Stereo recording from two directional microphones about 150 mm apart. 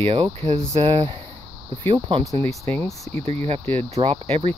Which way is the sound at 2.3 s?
45° right (ahead or behind).